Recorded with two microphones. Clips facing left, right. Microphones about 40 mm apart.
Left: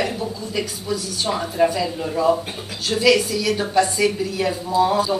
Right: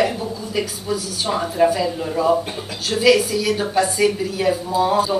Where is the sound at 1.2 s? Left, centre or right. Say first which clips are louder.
Right 2 dB; centre.